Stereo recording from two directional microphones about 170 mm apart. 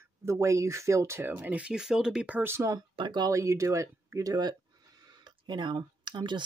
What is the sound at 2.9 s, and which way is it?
Speech, 25° right (ahead or behind).